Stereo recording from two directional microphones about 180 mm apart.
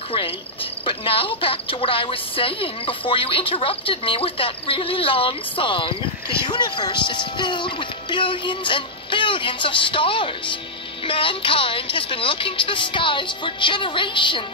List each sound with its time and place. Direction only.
0.8 s a woman's voice: 30° left (ahead or behind)